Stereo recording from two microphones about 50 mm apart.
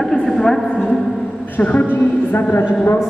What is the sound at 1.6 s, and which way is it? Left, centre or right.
Speech, left.